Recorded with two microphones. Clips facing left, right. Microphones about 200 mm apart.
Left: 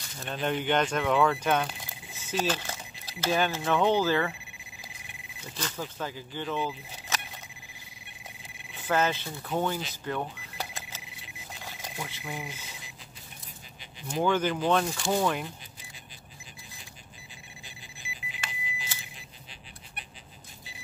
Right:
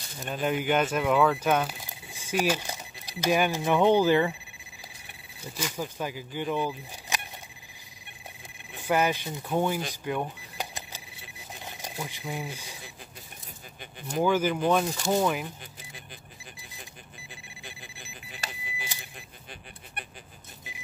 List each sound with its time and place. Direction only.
0.2 s speech: 10° right (ahead or behind)
5.6 s speech: 10° right (ahead or behind)
8.7 s speech: 10° right (ahead or behind)
10.0 s a sound: 15° right (ahead or behind)
11.6 s speech: 20° right (ahead or behind)
14.2 s speech: 10° right (ahead or behind)
17.6 s alarm clock: 45° right (ahead or behind)